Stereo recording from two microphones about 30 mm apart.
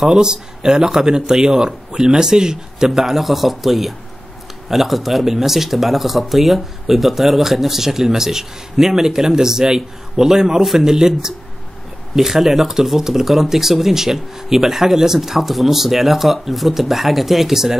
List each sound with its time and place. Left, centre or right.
0.1 s speech: right
2.9 s speech: centre
10.6 s speech: centre
10.9 s speech: centre